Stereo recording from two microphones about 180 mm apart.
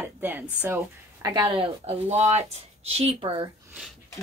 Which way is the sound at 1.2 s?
20° right (ahead or behind).